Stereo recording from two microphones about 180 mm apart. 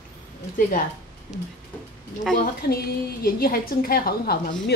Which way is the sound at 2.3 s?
55° left (ahead or behind).